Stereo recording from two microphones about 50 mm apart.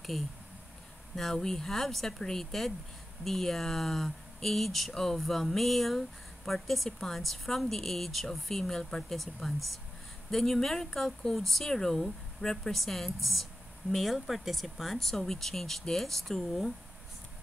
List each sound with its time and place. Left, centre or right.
1.1 s speech: centre